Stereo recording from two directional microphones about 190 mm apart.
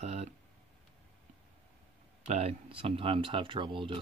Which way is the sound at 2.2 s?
35° right (ahead or behind).